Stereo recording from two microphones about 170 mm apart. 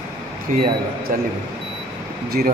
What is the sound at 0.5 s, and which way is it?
Speech, 55° right (ahead or behind).